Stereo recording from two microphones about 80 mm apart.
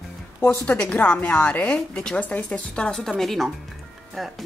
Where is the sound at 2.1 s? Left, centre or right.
Left.